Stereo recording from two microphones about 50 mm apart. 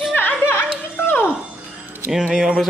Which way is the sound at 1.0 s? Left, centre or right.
Left.